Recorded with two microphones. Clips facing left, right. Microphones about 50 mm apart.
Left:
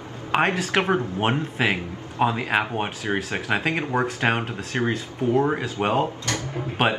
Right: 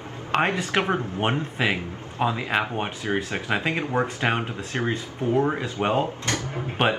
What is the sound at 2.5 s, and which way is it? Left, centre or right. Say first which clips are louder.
Speech: left 1 dB; centre.